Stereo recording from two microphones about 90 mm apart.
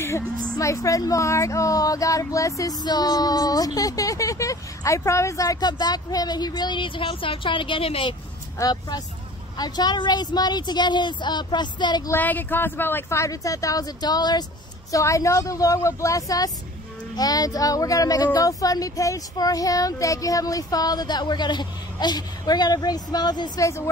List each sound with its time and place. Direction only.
0.6 s a woman's voice: 35° left (ahead or behind)
2.8 s a woman's voice: 50° left (ahead or behind); by 8.2 s 85° left
8.5 s speech: 50° left (ahead or behind)
12.1 s a woman's voice: 20° left (ahead or behind); by 14.4 s 50° left (ahead or behind)
14.9 s a woman's voice: 35° left (ahead or behind); by 23.6 s 55° left (ahead or behind)